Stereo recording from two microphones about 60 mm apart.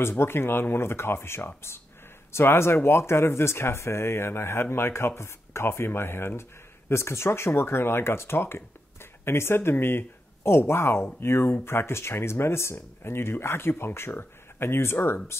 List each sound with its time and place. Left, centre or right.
0.0 s speech: left